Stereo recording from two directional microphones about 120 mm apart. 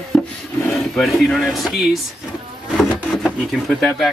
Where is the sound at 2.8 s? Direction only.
5° left (ahead or behind).